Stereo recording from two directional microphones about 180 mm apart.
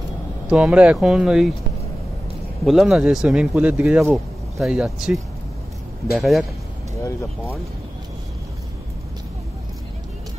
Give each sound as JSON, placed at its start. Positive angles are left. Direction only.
{"t": 0.5, "sound": "speech", "side_deg": -5}
{"t": 2.6, "sound": "speech", "side_deg": 0}
{"t": 7.0, "sound": "speech", "side_deg": 15}